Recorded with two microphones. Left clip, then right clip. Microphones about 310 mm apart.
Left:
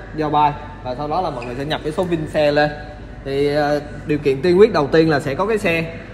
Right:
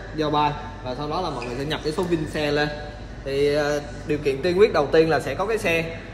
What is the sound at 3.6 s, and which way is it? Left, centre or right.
A man's voice, centre.